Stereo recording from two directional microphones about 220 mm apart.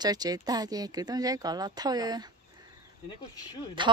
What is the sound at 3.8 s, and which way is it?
Speech, 20° right (ahead or behind).